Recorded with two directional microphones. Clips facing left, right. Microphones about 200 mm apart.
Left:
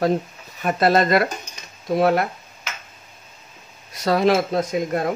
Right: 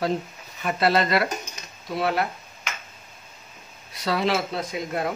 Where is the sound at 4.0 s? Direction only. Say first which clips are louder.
Left 6 dB; 45° left (ahead or behind).